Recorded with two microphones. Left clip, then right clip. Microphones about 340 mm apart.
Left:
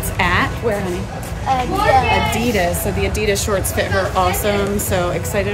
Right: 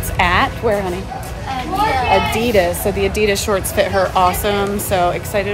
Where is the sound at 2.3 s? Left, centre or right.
Right; by 5.5 s centre.